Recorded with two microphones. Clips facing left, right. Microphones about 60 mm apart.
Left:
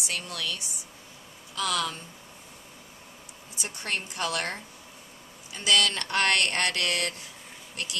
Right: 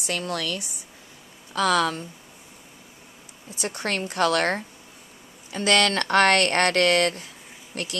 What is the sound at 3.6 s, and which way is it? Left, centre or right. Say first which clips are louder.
A woman's voice: right 6 dB; right.